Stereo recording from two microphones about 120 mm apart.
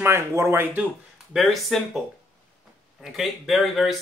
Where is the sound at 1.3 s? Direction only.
Centre (ahead or behind).